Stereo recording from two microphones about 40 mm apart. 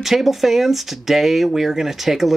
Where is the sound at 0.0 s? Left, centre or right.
Centre.